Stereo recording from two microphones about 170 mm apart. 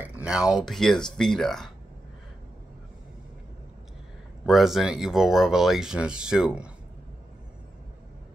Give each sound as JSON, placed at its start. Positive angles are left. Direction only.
{"t": 0.0, "sound": "a sound", "side_deg": -5}
{"t": 0.7, "sound": "speech", "side_deg": 0}
{"t": 4.5, "sound": "speech", "side_deg": 0}